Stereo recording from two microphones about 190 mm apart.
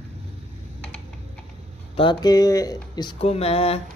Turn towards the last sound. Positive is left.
turn(degrees=30)  # may be behind; listen again after turning